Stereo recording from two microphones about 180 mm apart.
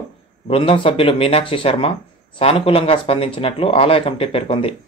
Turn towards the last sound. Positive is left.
turn(degrees=35)  # may be behind; listen again after turning